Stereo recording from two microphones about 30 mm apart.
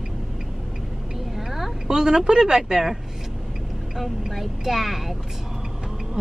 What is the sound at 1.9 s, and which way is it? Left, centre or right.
Speech, right.